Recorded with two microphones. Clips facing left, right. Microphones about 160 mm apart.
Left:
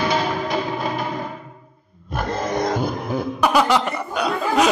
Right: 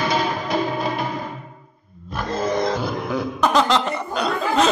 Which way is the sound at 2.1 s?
55° left (ahead or behind).